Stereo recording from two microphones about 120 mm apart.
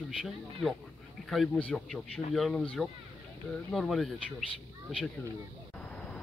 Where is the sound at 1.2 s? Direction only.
Centre (ahead or behind).